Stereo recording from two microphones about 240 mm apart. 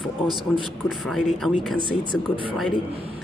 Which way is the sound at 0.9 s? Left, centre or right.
Centre.